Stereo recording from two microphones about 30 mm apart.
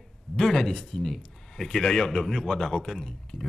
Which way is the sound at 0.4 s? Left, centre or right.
Centre.